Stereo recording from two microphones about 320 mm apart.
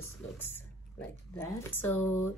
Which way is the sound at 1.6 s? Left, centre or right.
Centre.